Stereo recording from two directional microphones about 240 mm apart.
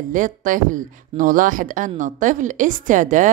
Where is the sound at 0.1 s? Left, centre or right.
Right.